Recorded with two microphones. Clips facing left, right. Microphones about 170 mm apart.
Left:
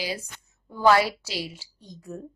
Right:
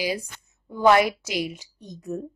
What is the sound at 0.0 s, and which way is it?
A woman's voice, 15° right (ahead or behind).